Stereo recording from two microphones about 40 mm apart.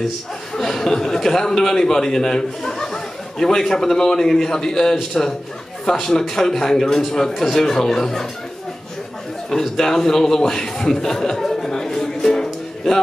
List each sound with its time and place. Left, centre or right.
0.6 s a man's voice: centre
9.5 s chuckle: centre